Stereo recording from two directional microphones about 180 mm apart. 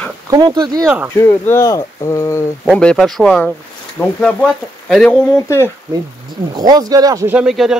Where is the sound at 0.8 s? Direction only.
10° right (ahead or behind).